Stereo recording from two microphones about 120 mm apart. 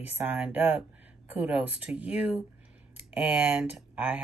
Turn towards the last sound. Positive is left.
turn(degrees=-10)  # may be behind; listen again after turning